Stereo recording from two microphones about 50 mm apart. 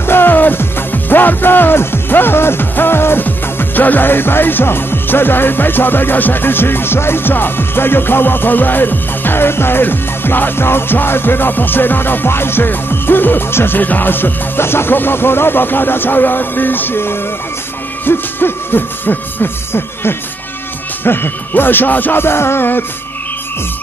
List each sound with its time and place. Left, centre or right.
0.0 s music: left
3.3 s music: left
13.7 s music: left
22.2 s music: left